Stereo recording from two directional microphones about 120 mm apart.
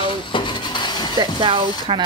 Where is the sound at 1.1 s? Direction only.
45° right (ahead or behind).